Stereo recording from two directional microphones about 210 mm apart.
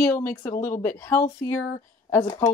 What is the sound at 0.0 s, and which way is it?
Speech, 10° left (ahead or behind).